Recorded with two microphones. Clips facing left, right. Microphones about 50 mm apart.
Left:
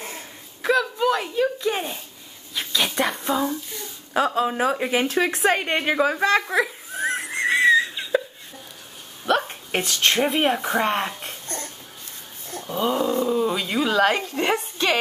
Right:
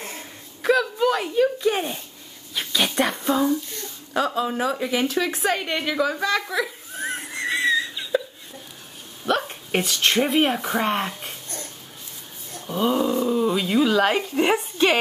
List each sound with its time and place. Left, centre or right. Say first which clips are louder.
0.0 s a sound: even; centre
4.1 s a woman's voice: left 2 dB; left
7.2 s wheeze: left 5 dB; centre
9.2 s hiccup: left 2 dB; centre
9.8 s speech: even; centre
12.5 s speech: right 1 dB; centre